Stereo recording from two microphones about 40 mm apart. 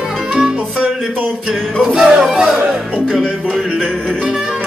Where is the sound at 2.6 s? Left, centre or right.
Centre.